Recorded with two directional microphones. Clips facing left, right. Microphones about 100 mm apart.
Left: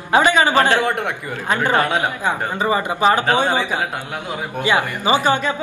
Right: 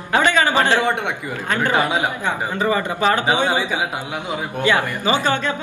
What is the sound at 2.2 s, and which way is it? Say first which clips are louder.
Speech: left 1 dB; 20° left (ahead or behind).